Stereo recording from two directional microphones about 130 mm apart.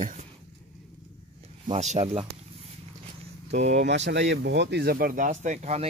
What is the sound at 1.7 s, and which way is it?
Speech, 60° right (ahead or behind).